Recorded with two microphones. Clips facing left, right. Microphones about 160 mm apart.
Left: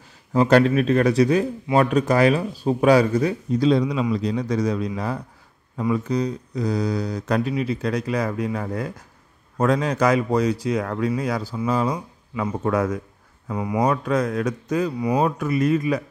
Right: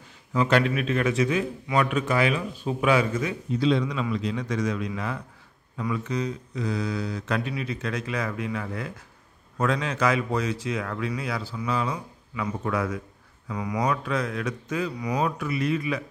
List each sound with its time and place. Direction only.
0.3 s a man's voice: 40° left (ahead or behind)
13.5 s speech: 30° left (ahead or behind)
14.0 s speech: 40° left (ahead or behind)
15.0 s speech: 30° left (ahead or behind)